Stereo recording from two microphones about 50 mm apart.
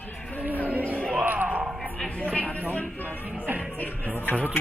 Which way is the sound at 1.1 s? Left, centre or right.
Right.